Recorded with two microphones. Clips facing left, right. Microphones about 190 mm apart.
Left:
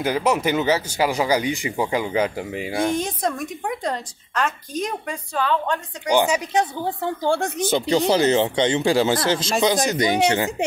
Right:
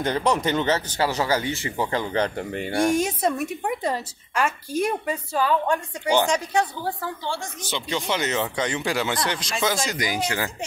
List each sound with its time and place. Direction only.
0.0 s speech: 10° left (ahead or behind)
2.8 s a woman's voice: 10° right (ahead or behind)
6.0 s speech: 10° left (ahead or behind)
6.5 s speech: 20° left (ahead or behind)
7.2 s speech: 55° left (ahead or behind)
8.1 s speech: 30° left (ahead or behind)